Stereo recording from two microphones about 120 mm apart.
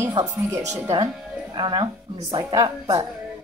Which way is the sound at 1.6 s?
45° right (ahead or behind).